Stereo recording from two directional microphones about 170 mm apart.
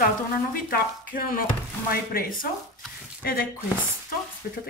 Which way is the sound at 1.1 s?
55° left (ahead or behind).